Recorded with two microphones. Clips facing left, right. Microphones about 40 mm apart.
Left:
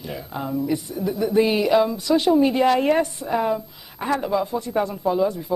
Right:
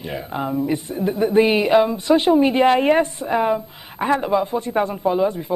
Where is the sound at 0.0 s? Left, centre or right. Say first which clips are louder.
Right 4 dB; right.